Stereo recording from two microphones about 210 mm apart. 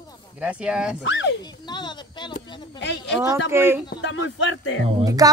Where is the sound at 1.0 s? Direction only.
60° left (ahead or behind).